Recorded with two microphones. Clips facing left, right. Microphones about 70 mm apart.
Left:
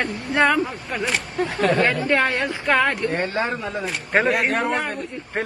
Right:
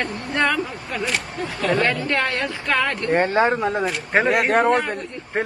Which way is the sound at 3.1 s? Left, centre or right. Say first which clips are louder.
Right 6 dB; right.